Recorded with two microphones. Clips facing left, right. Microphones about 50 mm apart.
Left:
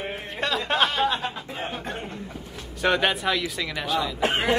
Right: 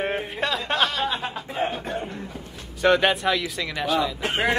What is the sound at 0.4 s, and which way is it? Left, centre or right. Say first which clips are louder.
Speech: left 2 dB; centre.